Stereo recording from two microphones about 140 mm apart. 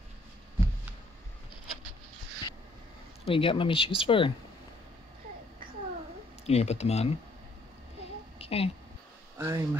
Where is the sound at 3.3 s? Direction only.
40° left (ahead or behind).